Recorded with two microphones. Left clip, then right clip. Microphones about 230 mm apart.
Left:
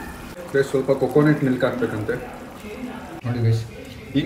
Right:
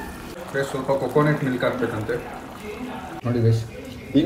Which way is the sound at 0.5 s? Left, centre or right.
Centre.